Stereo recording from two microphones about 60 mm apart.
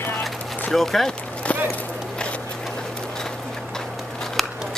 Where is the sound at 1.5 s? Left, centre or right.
Left.